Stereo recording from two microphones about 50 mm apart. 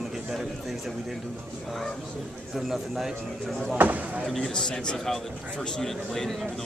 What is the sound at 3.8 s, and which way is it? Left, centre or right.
Speech, right.